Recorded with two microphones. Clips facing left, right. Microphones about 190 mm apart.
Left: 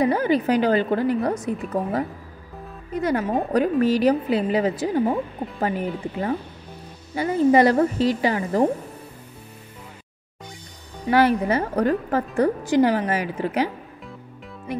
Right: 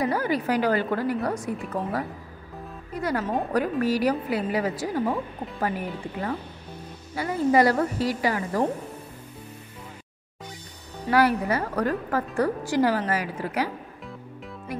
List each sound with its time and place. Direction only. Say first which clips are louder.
0.0 s a woman's voice: left 5 dB; 20° left (ahead or behind)
2.9 s a woman's voice: left 4 dB; 20° left (ahead or behind)
11.1 s a woman's voice: left 3 dB; 25° left (ahead or behind)
14.7 s speech: left 5 dB; 20° left (ahead or behind)